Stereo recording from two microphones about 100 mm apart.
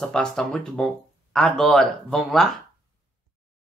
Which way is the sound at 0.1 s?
10° left (ahead or behind).